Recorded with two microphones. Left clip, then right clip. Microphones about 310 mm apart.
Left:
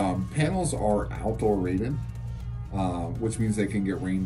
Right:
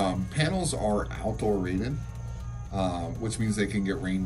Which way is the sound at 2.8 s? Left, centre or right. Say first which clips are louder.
Even; centre.